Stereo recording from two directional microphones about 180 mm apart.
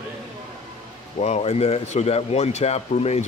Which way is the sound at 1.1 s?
35° left (ahead or behind).